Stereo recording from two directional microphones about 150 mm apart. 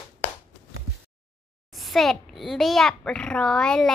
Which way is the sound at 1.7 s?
Centre (ahead or behind).